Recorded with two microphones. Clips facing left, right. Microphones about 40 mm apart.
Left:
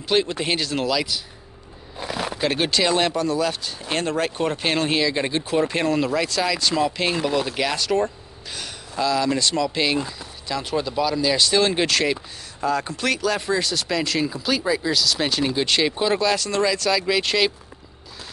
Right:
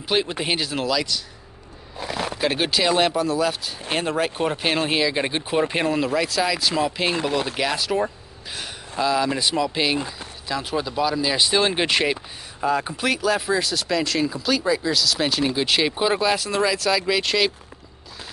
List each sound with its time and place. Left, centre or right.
0.1 s speech: centre
0.8 s speech: centre
5.9 s speech: centre